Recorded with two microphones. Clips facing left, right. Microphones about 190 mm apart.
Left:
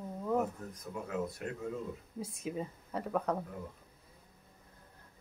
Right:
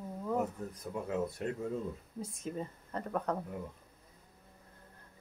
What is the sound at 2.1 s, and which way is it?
Speech, 5° left (ahead or behind).